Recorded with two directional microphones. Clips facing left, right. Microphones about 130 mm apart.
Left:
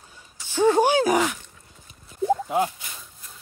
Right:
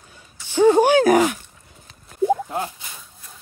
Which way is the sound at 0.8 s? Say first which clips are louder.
Right 5 dB; 65° right (ahead or behind).